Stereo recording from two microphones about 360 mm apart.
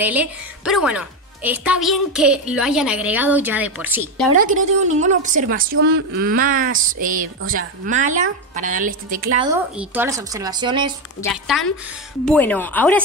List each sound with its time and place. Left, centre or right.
0.0 s a woman's voice: centre
4.8 s speech: centre
9.5 s speech: centre
11.1 s a woman's voice: centre